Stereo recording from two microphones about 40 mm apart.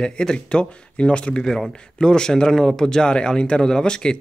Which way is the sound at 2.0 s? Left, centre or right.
Centre.